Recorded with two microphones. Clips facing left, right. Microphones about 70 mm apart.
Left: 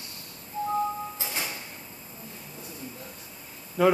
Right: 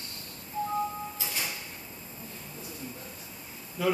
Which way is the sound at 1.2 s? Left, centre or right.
Left.